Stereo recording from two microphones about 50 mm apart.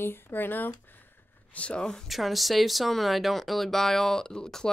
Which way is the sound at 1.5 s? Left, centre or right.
Left.